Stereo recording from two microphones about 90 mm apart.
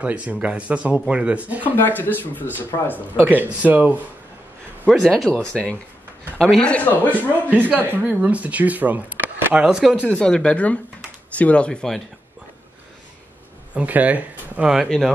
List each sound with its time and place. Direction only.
0.0 s speech: 15° right (ahead or behind)
1.8 s speech: 20° left (ahead or behind)
3.2 s speech: 20° right (ahead or behind)
4.8 s a man's voice: 5° left (ahead or behind)
7.7 s speech: 20° right (ahead or behind)
10.1 s a man's voice: 10° left (ahead or behind)
13.7 s speech: 15° right (ahead or behind)
14.9 s speech: 5° left (ahead or behind)